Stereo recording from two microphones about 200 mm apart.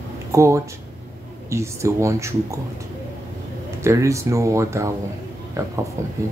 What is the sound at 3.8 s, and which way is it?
Speech, 15° right (ahead or behind).